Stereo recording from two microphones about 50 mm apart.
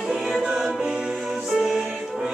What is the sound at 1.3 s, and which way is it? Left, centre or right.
Music, centre.